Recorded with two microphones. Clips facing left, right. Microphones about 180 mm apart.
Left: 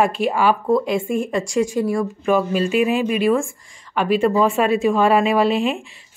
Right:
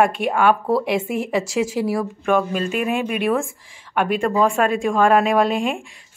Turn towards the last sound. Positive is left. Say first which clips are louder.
# even
turn(degrees=5)  # may be behind; listen again after turning